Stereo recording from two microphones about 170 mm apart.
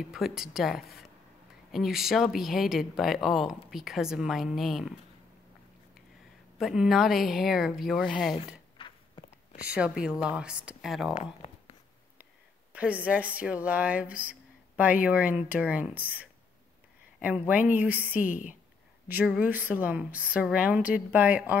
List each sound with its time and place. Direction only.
0.1 s speech: 5° right (ahead or behind)
6.6 s speech: centre (ahead or behind)
8.7 s walk: 30° left (ahead or behind)
9.8 s speech: 5° right (ahead or behind)
12.7 s speech: 10° right (ahead or behind)
18.2 s a woman's voice: 50° left (ahead or behind)
19.0 s speech: 5° right (ahead or behind)